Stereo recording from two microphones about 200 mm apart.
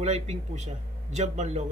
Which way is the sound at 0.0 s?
35° right (ahead or behind).